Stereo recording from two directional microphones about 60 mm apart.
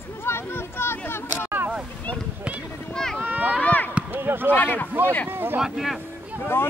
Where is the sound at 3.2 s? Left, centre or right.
Right.